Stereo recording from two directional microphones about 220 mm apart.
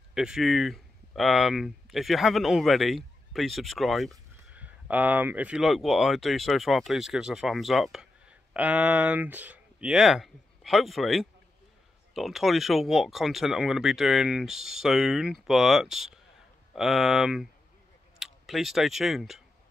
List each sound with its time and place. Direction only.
0.1 s speech: centre (ahead or behind)